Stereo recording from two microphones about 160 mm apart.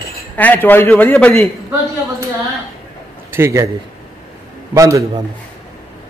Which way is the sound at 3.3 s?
15° right (ahead or behind).